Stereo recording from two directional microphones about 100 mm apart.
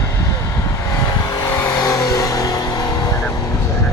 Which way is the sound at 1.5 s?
25° left (ahead or behind).